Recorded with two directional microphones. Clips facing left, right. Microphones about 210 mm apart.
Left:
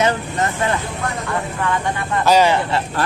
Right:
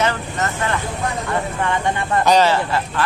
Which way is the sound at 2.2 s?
10° left (ahead or behind).